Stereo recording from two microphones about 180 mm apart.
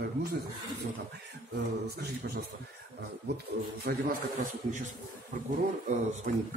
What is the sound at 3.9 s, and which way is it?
Speech, 70° right (ahead or behind).